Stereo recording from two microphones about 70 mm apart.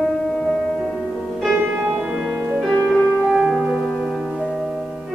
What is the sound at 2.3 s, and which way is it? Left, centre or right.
Music, right.